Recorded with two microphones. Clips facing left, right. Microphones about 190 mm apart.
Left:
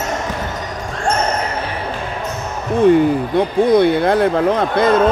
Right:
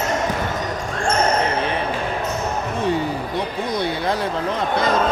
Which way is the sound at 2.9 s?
55° left (ahead or behind).